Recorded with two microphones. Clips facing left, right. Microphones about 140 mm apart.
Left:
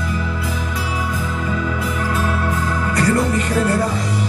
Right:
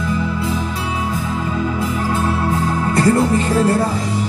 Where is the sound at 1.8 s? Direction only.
30° right (ahead or behind).